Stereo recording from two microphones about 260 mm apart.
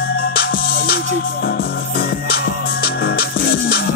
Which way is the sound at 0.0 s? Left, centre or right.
Left.